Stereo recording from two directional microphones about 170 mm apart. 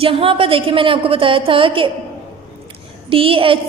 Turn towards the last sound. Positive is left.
turn(degrees=-30)  # may be behind; listen again after turning